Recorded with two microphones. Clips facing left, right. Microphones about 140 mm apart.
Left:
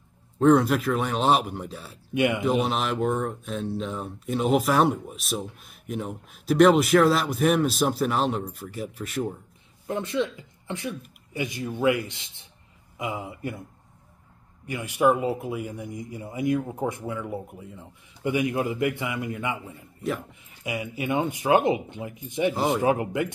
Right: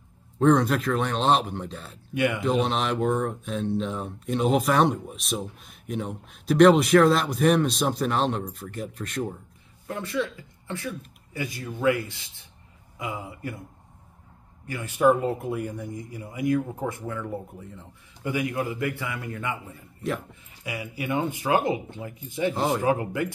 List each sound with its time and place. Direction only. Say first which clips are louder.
0.4 s speech: left 1 dB; 5° left (ahead or behind)
2.1 s speech: left 2 dB; 20° left (ahead or behind)
2.4 s speech: even; 5° left (ahead or behind)
9.8 s speech: left 2 dB; 20° left (ahead or behind)
14.7 s speech: left 1 dB; 15° left (ahead or behind)
15.0 s speech: right 1 dB; 5° left (ahead or behind)
15.8 s speech: left 1 dB; 20° left (ahead or behind)
18.2 s speech: left 3 dB; 20° left (ahead or behind)
20.0 s speech: even; centre (ahead or behind)
20.6 s speech: left 2 dB; 20° left (ahead or behind)